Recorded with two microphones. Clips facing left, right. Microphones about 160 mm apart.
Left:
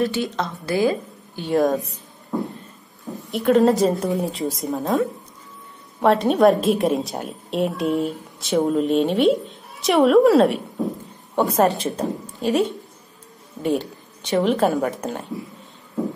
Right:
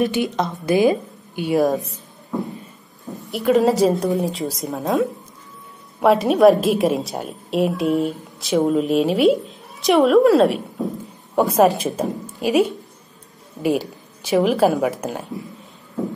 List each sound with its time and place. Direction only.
0.0 s a woman's voice: 15° right (ahead or behind); by 2.0 s centre (ahead or behind)
3.3 s a woman's voice: centre (ahead or behind)